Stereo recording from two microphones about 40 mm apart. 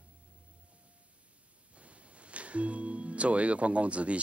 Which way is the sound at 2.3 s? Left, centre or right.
Right.